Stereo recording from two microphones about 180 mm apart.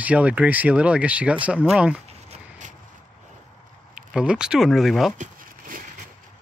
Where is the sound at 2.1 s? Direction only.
40° right (ahead or behind).